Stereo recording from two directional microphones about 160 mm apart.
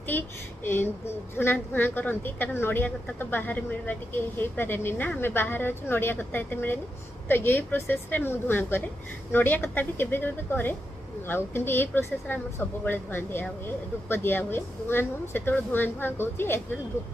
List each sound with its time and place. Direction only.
0.7 s a woman's voice: 15° left (ahead or behind)